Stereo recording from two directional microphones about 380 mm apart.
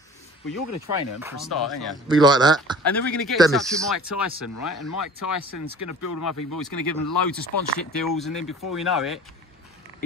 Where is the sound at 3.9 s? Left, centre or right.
Left.